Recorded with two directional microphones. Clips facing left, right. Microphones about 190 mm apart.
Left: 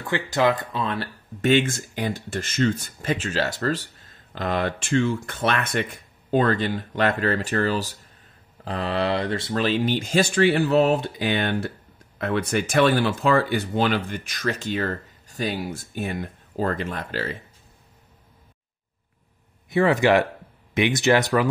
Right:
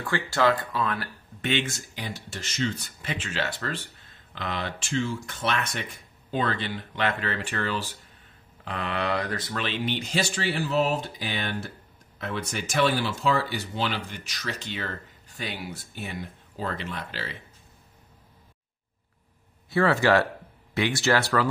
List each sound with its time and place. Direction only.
0.0 s speech: 20° left (ahead or behind)
1.4 s speech: 45° left (ahead or behind)
6.3 s speech: 45° left (ahead or behind)
19.7 s speech: 15° left (ahead or behind)